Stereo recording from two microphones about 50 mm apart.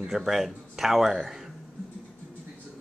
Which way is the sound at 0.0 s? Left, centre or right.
Centre.